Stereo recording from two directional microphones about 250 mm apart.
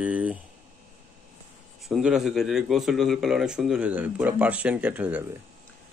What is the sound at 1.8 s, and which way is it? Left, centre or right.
Speech, centre.